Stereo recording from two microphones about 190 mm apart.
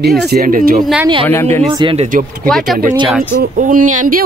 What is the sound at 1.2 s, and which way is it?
Speech, 10° left (ahead or behind).